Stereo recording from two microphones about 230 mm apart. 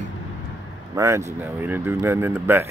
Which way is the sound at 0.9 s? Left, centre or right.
Centre.